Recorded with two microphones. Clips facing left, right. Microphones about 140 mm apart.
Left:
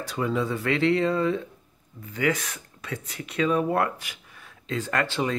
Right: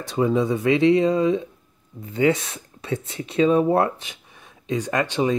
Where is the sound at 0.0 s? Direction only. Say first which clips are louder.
Right 6 dB; 20° right (ahead or behind).